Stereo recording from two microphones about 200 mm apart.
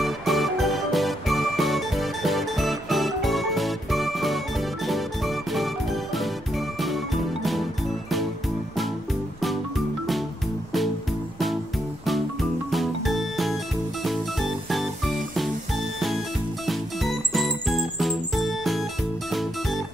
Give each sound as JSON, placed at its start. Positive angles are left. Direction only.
{"t": 0.0, "sound": "music", "side_deg": 0}
{"t": 9.4, "sound": "music", "side_deg": 0}
{"t": 12.7, "sound": "music", "side_deg": 0}